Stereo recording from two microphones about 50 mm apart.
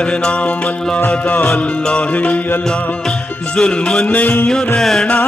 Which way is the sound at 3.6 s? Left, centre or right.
Centre.